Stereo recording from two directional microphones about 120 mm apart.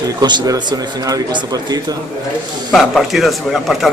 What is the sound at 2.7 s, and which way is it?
Speech, centre (ahead or behind).